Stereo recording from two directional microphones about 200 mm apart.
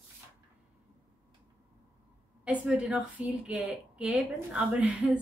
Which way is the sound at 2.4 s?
5° right (ahead or behind).